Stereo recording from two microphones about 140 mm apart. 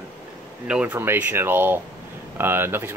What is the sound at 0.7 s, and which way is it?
Speech, 10° right (ahead or behind).